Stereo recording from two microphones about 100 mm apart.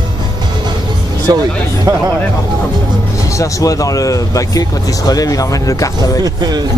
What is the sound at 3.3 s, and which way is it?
Speech, 35° left (ahead or behind).